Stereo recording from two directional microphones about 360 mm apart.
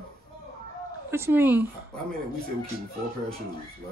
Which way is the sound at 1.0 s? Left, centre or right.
Centre.